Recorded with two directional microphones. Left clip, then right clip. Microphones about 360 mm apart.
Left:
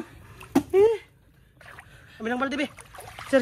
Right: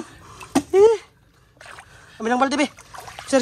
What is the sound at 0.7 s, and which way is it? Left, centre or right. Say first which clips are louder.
Speech: right 6 dB; centre.